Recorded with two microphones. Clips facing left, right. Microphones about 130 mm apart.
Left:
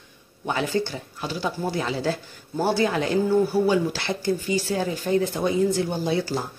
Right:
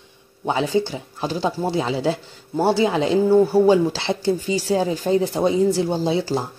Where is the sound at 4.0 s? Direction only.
25° right (ahead or behind).